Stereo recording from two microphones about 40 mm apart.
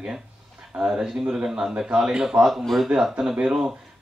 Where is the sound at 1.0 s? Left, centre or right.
Centre.